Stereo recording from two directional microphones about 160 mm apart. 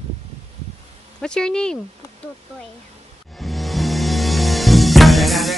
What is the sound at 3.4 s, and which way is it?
Music, centre (ahead or behind).